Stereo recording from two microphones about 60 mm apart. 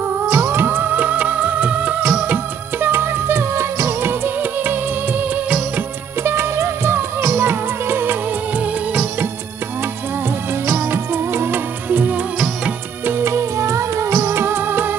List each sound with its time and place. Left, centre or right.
0.3 s music of bollywood: right
6.2 s music: right
10.7 s music: right
13.0 s music of bollywood: right